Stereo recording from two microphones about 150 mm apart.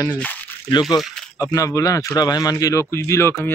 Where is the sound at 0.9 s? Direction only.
Centre (ahead or behind).